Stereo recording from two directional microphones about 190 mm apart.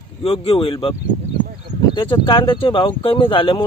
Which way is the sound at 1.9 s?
25° left (ahead or behind).